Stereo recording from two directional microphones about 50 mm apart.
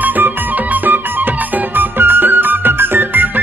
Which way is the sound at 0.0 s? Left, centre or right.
Right.